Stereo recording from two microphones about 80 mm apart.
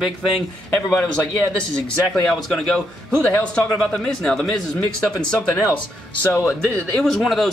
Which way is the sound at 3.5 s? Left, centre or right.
Centre.